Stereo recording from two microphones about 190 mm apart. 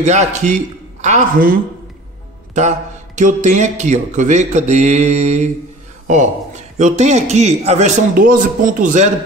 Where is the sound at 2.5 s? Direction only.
40° right (ahead or behind).